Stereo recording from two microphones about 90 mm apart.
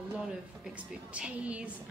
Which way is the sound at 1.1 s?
15° right (ahead or behind).